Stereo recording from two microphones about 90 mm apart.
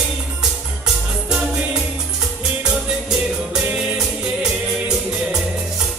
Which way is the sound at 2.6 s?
10° right (ahead or behind).